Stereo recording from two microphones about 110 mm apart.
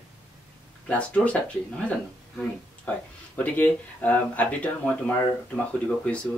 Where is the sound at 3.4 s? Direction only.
15° left (ahead or behind).